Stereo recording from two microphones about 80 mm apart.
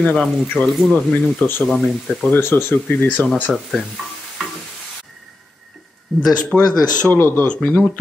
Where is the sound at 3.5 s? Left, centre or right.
Centre.